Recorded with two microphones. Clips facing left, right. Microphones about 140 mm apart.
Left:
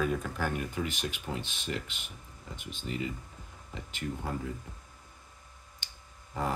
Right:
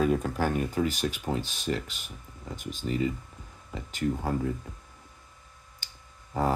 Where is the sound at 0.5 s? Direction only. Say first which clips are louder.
Right 8 dB; 40° right (ahead or behind).